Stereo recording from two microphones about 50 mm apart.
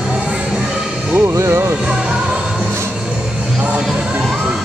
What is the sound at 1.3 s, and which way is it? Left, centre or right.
Music, right.